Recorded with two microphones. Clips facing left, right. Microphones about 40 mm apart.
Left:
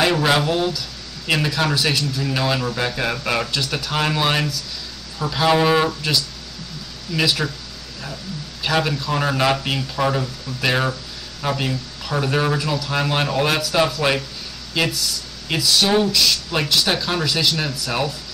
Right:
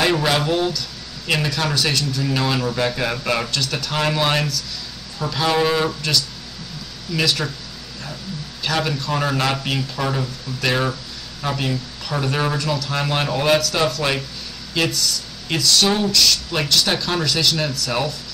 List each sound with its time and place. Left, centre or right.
0.0 s speech: centre
8.6 s speech: centre